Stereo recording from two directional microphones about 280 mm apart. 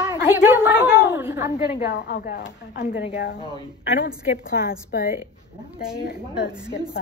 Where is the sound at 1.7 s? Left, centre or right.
Left.